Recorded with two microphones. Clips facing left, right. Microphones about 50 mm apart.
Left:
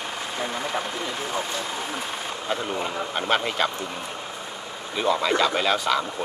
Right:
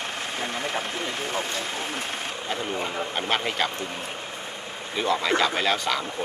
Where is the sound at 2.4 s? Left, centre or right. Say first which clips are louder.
Left 2 dB; centre.